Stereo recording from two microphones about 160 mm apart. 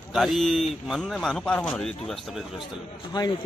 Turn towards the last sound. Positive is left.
turn(degrees=30)  # may be behind; listen again after turning